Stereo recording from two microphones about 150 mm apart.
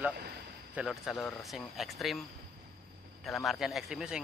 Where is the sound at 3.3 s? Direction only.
Centre (ahead or behind).